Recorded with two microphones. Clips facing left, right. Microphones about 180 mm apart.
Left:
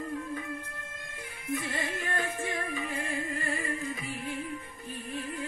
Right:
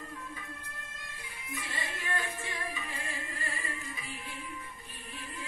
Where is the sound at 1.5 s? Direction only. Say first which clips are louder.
Left 8 dB; 50° left (ahead or behind).